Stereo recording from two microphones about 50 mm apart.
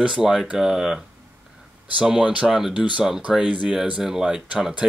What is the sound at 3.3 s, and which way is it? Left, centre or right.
Speech, centre.